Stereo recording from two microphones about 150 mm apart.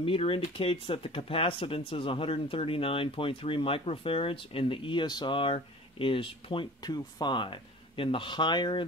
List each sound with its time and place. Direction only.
0.0 s speech: 40° left (ahead or behind)